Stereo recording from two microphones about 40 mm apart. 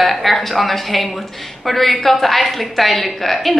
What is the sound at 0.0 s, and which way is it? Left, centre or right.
A woman's voice, centre.